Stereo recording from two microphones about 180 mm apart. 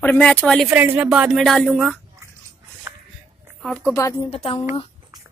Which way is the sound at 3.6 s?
5° left (ahead or behind).